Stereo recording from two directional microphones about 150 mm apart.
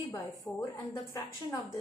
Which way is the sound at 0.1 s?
20° left (ahead or behind).